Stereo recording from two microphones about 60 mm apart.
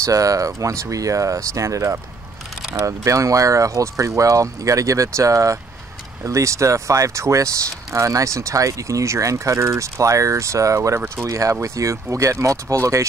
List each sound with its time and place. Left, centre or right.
0.0 s speech: right